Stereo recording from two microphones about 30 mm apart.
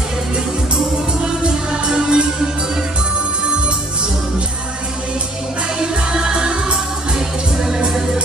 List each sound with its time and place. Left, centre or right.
1.2 s music: right
5.8 s music: right
7.2 s music: centre